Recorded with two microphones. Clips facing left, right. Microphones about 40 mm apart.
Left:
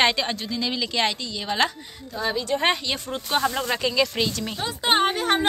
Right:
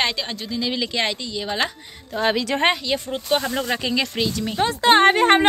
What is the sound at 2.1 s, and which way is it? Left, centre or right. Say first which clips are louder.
Speech: right 6 dB; right.